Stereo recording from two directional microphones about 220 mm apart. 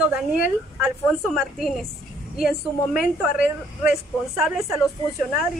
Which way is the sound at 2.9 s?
Centre (ahead or behind).